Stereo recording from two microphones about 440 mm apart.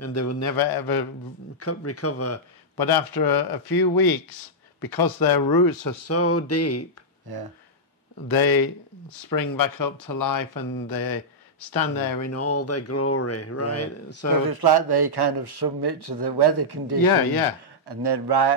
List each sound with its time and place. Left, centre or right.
0.0 s speech: left
0.6 s speech: left
1.6 s speech: left
2.8 s speech: left
6.0 s speech: left
7.3 s speech: right
8.3 s speech: left
14.4 s speech: right